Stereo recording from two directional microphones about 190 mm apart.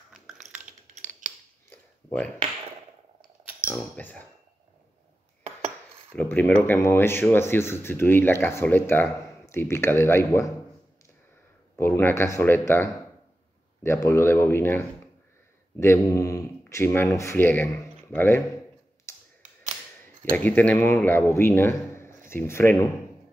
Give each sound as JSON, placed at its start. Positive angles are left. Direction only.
{"t": 0.4, "sound": "a sound", "side_deg": -40}
{"t": 1.7, "sound": "a sound", "side_deg": 5}
{"t": 3.7, "sound": "speech", "side_deg": 10}
{"t": 6.1, "sound": "speech", "side_deg": 10}
{"t": 11.7, "sound": "speech", "side_deg": 10}
{"t": 20.2, "sound": "speech", "side_deg": 10}